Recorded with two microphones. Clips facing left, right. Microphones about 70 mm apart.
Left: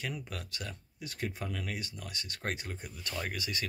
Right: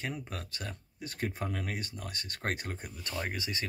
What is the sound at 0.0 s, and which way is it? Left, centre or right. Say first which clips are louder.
Speech: right 1 dB; right.